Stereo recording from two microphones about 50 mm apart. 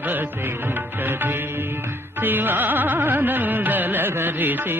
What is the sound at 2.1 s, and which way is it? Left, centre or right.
Carnatic music, right.